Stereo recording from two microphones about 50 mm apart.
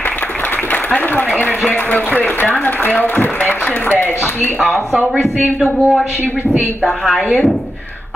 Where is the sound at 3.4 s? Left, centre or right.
Left.